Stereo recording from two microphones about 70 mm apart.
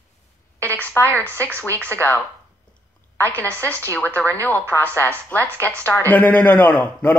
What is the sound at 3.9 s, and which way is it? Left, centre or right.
Speech, left.